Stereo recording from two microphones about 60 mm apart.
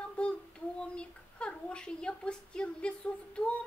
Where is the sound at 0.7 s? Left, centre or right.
Centre.